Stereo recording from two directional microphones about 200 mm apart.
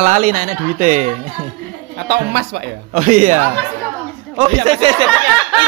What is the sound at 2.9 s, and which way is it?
A man's voice, 40° right (ahead or behind).